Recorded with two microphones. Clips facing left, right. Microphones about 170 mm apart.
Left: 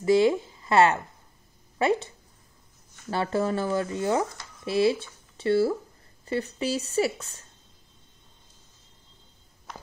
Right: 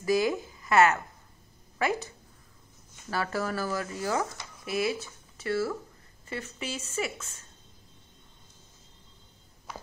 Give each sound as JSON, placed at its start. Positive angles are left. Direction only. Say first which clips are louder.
{"t": 0.0, "sound": "speech", "louder": "left 6 dB", "side_deg": 25}